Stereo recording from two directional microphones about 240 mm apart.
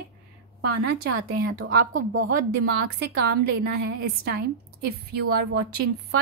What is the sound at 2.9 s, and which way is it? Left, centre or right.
A woman's voice, right.